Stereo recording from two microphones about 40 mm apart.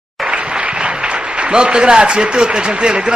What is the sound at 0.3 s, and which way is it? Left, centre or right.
A man's voice, right.